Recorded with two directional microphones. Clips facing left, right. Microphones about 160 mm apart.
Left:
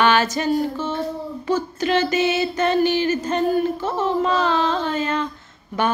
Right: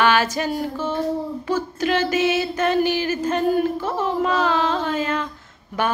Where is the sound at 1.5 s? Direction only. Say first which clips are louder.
Left 2 dB; 5° right (ahead or behind).